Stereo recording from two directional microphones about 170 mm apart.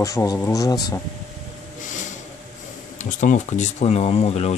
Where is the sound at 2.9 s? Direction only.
45° left (ahead or behind).